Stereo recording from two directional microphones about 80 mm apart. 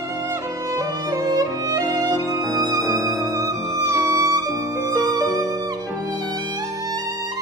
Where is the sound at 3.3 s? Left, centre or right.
Right.